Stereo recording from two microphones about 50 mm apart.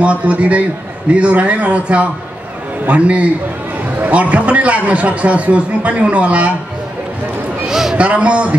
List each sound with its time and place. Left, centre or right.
0.0 s a man's voice: right
7.6 s a sound: centre
8.0 s a man's voice: right